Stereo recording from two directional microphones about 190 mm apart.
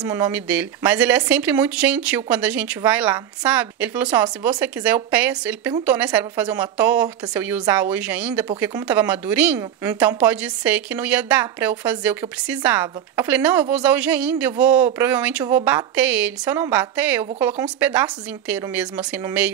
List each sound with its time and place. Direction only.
0.0 s speech: 20° right (ahead or behind)
0.3 s a woman's voice: 10° right (ahead or behind)